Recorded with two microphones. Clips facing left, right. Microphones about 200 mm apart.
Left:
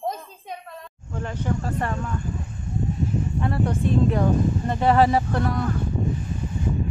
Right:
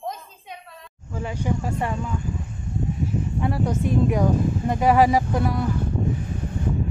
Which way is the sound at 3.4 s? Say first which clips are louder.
Right 1 dB; 10° right (ahead or behind).